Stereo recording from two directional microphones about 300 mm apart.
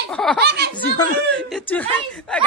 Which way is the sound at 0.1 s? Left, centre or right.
Centre.